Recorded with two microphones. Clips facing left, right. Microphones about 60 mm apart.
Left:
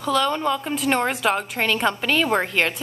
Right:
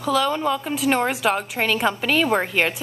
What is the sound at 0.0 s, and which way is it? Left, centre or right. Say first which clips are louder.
A woman's voice: even; centre.